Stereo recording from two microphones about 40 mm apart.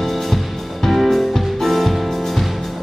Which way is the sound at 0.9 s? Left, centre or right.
Centre.